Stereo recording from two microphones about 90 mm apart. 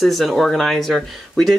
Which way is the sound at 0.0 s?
Centre (ahead or behind).